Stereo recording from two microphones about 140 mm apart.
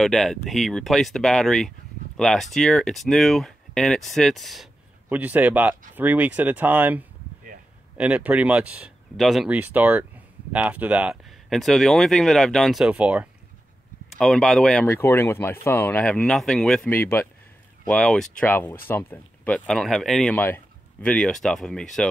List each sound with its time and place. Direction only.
0.0 s speech: centre (ahead or behind)
5.1 s speech: 10° right (ahead or behind)
14.1 s speech: centre (ahead or behind)
14.9 s speech: 15° left (ahead or behind)